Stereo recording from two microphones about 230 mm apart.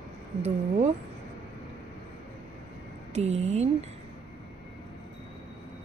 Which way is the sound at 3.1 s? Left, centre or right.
Right.